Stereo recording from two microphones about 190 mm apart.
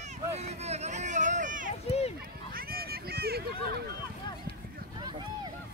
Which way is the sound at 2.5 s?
55° right (ahead or behind).